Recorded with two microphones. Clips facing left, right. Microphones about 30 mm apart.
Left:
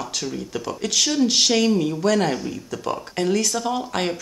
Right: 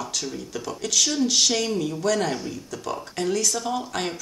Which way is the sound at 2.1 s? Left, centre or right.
Centre.